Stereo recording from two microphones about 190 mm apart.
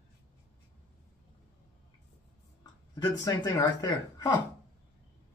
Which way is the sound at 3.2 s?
20° left (ahead or behind).